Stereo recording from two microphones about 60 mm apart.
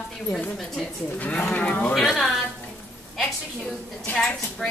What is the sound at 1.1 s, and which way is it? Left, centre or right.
Speech, left.